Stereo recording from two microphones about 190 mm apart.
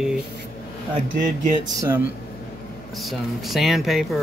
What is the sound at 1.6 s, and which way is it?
Speech, 15° right (ahead or behind).